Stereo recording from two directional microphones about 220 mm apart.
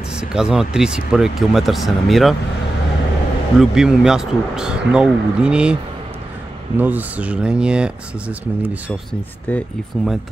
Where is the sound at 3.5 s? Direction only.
Centre (ahead or behind).